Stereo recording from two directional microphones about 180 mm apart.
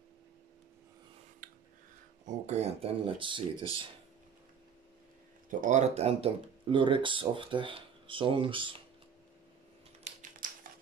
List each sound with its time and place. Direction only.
1.4 s a sound: 45° right (ahead or behind)
2.2 s speech: 40° right (ahead or behind)
5.5 s speech: 45° right (ahead or behind); by 8.8 s 30° right (ahead or behind)
10.0 s typing: 45° right (ahead or behind)